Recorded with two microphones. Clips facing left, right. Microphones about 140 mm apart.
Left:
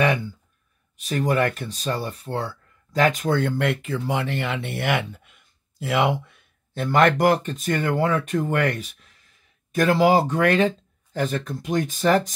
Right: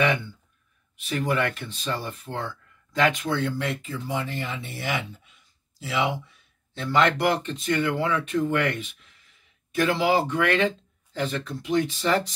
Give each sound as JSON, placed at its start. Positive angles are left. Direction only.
{"t": 0.9, "sound": "speech", "side_deg": 40}